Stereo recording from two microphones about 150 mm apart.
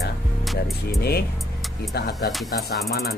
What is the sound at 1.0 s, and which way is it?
Speech, 90° left.